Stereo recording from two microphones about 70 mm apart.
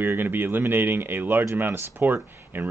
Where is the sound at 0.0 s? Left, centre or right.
Right.